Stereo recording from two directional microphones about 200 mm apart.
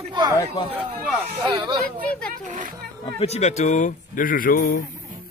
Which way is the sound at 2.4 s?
40° right (ahead or behind).